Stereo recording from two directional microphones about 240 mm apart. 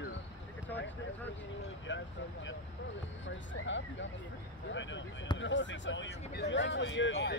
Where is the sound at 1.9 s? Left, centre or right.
Left.